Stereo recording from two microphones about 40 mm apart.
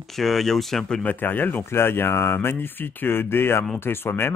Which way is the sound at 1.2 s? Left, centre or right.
Left.